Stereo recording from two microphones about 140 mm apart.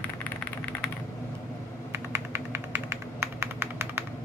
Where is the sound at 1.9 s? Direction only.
15° right (ahead or behind).